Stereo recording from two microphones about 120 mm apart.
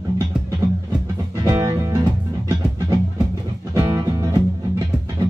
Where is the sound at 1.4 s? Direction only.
25° right (ahead or behind).